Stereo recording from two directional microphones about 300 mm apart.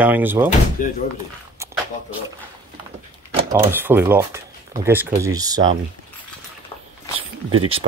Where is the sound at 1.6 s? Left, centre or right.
Centre.